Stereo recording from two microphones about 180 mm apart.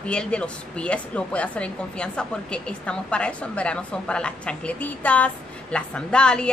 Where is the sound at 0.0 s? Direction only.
5° left (ahead or behind).